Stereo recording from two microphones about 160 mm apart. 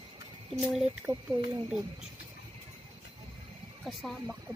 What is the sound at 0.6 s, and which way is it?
Speech, 5° right (ahead or behind).